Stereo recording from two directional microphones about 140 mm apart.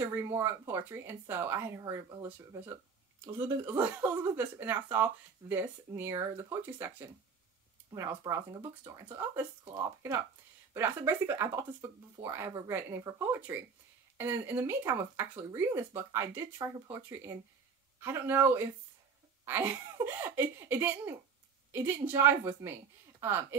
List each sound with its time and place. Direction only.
0.0 s speech: 15° right (ahead or behind)
3.6 s speech: 10° right (ahead or behind)